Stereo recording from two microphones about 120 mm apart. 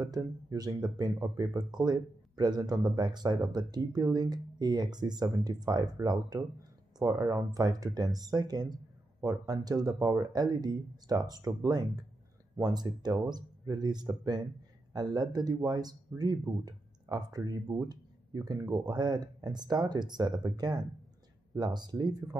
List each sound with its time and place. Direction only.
0.0 s speech: 30° right (ahead or behind)